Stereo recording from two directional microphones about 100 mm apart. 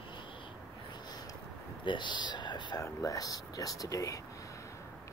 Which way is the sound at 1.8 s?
50° left (ahead or behind).